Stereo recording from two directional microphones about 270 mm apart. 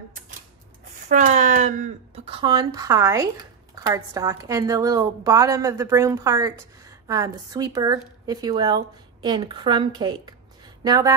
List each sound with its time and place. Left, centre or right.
1.0 s a woman's voice: right